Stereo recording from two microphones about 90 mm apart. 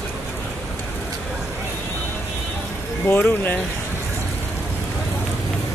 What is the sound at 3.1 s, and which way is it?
Speech, 20° left (ahead or behind).